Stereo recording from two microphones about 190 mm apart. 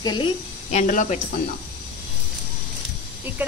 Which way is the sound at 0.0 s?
20° left (ahead or behind).